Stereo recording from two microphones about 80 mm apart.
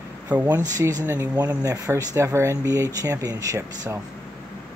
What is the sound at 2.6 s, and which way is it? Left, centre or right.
Speech, right.